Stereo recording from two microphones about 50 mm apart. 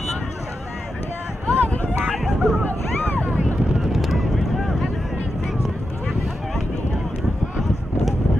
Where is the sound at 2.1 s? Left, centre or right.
Centre.